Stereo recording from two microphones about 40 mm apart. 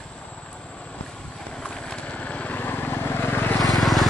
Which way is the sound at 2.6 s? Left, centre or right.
Left.